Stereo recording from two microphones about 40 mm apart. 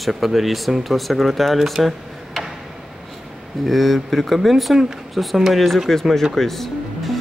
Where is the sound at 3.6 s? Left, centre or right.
Centre.